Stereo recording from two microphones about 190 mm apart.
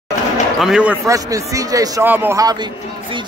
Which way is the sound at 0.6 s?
5° right (ahead or behind).